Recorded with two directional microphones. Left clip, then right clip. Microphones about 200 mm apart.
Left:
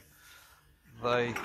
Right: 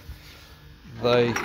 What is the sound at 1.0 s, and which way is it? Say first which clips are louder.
Speech: right 9 dB; 20° right (ahead or behind).